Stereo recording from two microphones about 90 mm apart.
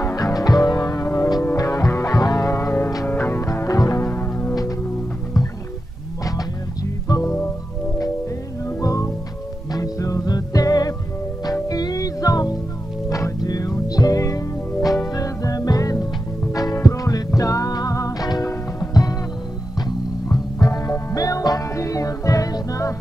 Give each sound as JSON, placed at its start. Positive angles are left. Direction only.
{"t": 0.0, "sound": "music", "side_deg": 45}
{"t": 1.0, "sound": "music", "side_deg": 25}
{"t": 1.6, "sound": "music", "side_deg": 40}
{"t": 2.5, "sound": "music", "side_deg": 30}
{"t": 3.3, "sound": "music", "side_deg": 35}
{"t": 4.0, "sound": "music", "side_deg": 25}
{"t": 7.1, "sound": "music", "side_deg": 40}
{"t": 8.8, "sound": "music", "side_deg": 35}
{"t": 20.6, "sound": "music", "side_deg": 40}